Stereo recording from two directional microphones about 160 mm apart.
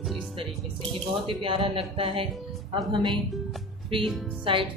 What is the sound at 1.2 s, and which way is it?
Speech, 35° right (ahead or behind).